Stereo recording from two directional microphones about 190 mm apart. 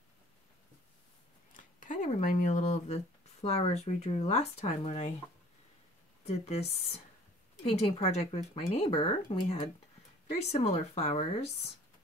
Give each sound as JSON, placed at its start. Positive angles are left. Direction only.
{"t": 1.5, "sound": "speech", "side_deg": 45}
{"t": 6.2, "sound": "speech", "side_deg": 35}